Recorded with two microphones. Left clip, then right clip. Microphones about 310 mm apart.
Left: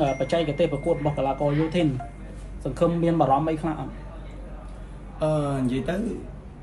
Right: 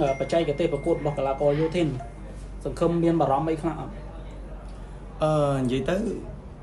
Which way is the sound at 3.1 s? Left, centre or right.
Centre.